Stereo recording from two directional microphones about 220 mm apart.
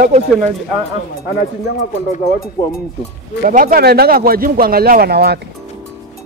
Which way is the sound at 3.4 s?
40° right (ahead or behind).